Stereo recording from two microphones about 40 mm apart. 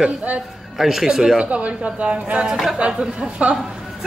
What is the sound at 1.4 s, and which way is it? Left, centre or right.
Speech, right.